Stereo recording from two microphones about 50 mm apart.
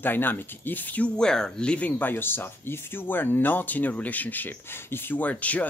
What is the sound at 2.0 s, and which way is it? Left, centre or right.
Speech, left.